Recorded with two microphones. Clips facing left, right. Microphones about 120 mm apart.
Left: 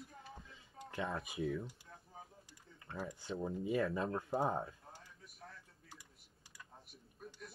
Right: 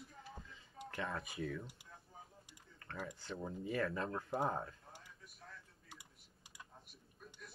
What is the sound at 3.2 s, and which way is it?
Speech, 15° left (ahead or behind).